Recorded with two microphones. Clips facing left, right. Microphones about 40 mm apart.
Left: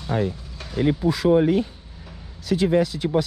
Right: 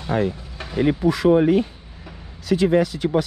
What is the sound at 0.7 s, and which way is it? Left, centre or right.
Speech, right.